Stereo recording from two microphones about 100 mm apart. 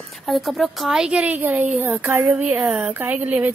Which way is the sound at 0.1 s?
Centre (ahead or behind).